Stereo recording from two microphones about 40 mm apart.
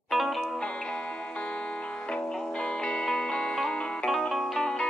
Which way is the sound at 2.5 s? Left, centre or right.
Left.